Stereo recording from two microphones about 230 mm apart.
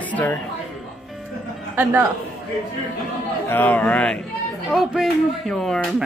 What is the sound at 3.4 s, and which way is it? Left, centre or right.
Speech, centre.